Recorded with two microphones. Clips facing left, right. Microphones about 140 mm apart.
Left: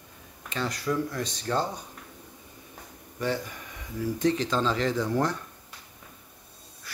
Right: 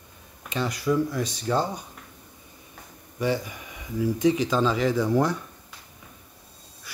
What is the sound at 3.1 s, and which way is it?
Speech, 10° right (ahead or behind).